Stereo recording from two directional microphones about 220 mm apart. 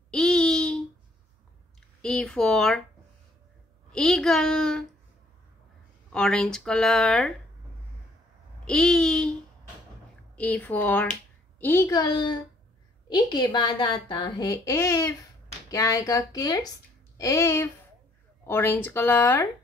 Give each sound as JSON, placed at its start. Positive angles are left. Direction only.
{"t": 0.1, "sound": "a sound", "side_deg": 5}
{"t": 2.0, "sound": "speech", "side_deg": 5}
{"t": 3.9, "sound": "speech", "side_deg": 0}
{"t": 6.1, "sound": "speech", "side_deg": 5}
{"t": 8.6, "sound": "speech", "side_deg": 5}
{"t": 10.3, "sound": "speech", "side_deg": 5}